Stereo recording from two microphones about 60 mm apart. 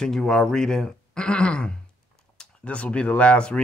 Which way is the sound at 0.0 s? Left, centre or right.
Centre.